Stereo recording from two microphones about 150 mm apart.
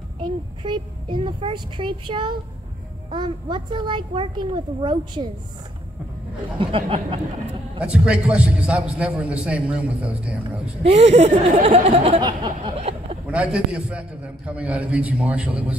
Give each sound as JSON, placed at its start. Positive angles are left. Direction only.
{"t": 0.2, "sound": "a child's voice", "side_deg": -30}
{"t": 6.6, "sound": "a child's voice", "side_deg": -35}
{"t": 7.8, "sound": "a man's voice", "side_deg": -5}
{"t": 10.6, "sound": "speech", "side_deg": -45}
{"t": 12.2, "sound": "a sound", "side_deg": -35}
{"t": 13.3, "sound": "a man's voice", "side_deg": -10}